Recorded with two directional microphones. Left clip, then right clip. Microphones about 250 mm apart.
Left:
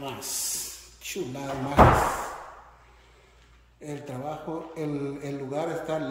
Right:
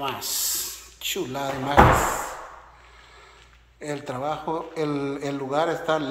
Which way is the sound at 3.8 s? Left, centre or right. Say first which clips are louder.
Right 7 dB; right.